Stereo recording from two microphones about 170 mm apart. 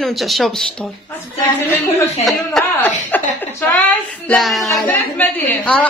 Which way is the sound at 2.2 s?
5° left (ahead or behind).